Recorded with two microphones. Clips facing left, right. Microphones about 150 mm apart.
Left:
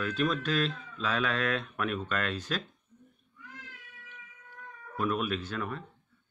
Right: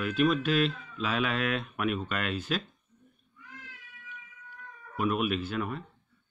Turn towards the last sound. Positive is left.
turn(degrees=-5)  # may be behind; listen again after turning